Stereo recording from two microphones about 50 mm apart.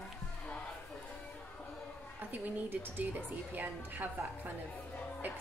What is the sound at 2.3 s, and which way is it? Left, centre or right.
A woman's voice, right.